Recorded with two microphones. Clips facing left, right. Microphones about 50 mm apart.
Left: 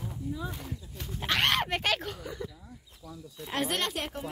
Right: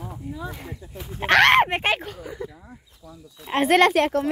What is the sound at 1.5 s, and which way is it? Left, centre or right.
Speech, right.